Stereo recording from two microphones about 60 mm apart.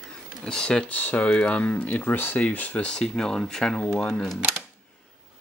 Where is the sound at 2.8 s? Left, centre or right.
Centre.